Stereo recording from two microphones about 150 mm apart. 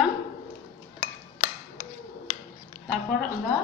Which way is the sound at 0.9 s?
50° left (ahead or behind).